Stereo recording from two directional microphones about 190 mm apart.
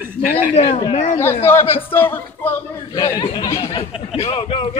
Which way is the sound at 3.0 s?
20° left (ahead or behind).